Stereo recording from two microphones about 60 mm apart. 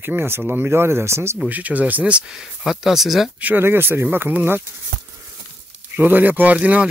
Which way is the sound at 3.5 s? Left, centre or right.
Right.